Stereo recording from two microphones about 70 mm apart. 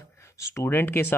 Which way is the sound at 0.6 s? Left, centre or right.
Left.